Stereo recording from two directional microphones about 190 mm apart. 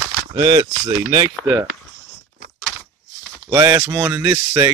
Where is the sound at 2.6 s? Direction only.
5° right (ahead or behind).